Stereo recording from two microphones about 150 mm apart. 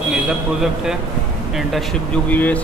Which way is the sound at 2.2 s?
10° left (ahead or behind).